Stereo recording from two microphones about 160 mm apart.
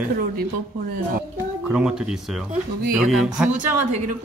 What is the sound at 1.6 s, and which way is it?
Speech, 5° right (ahead or behind).